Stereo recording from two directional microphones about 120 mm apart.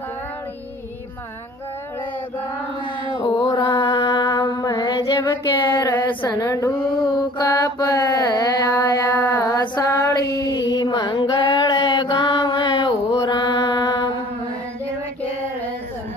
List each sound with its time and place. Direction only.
3.2 s mantra: 40° left (ahead or behind)
6.2 s a woman's voice: 30° left (ahead or behind)
7.3 s mantra: 35° left (ahead or behind)
9.1 s female singing: 15° left (ahead or behind)
9.4 s mantra: 30° left (ahead or behind)